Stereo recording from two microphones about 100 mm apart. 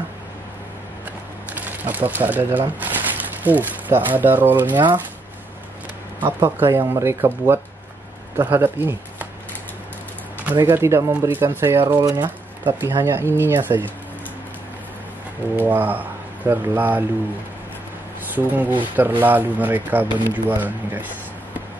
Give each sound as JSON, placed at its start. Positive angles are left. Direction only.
{"t": 1.5, "sound": "speech", "side_deg": -15}
{"t": 6.4, "sound": "speech", "side_deg": -25}
{"t": 10.7, "sound": "speech", "side_deg": -25}
{"t": 12.0, "sound": "speech", "side_deg": -35}
{"t": 12.6, "sound": "speech", "side_deg": -25}
{"t": 15.5, "sound": "speech", "side_deg": -20}
{"t": 18.3, "sound": "speech", "side_deg": -20}